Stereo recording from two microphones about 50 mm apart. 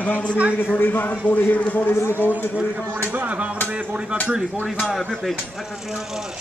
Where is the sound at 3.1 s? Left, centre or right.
Right.